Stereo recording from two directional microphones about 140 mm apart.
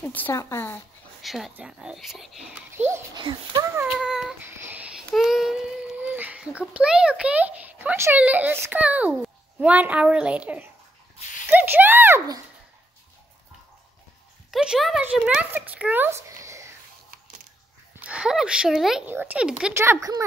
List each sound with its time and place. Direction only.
0.0 s speech: 15° left (ahead or behind)
1.2 s speech: centre (ahead or behind)
3.2 s speech: 35° right (ahead or behind)
3.7 s child singing: 10° right (ahead or behind)
9.6 s a woman's voice: 10° right (ahead or behind)
11.5 s a sound: 15° right (ahead or behind)
14.5 s speech: 5° right (ahead or behind); by 16.7 s 20° right (ahead or behind)
18.0 s a woman's voice: 5° right (ahead or behind)
19.8 s speech: 20° right (ahead or behind)